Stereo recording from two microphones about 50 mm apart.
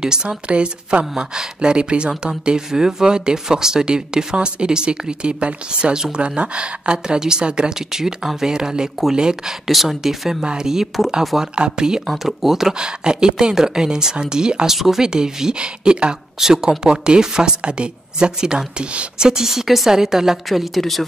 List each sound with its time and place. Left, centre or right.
0.0 s a woman's voice: centre
9.7 s speech: centre
10.4 s a woman's voice: centre
12.1 s a woman's voice: centre